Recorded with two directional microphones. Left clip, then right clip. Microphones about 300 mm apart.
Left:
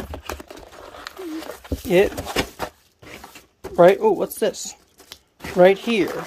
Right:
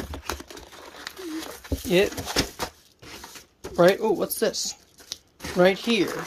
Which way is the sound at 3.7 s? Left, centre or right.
Centre.